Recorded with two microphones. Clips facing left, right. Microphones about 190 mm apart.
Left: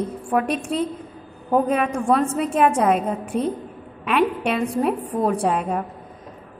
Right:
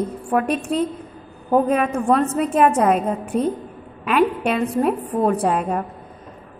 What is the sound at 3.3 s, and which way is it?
Speech, 35° right (ahead or behind).